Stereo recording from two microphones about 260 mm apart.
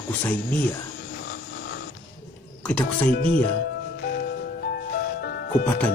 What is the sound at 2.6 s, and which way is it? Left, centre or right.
Speech, centre.